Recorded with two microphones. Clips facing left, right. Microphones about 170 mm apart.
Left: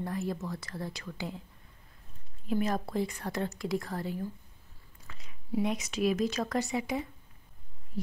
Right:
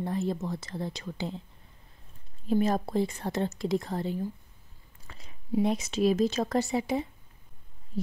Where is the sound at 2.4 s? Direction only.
30° right (ahead or behind).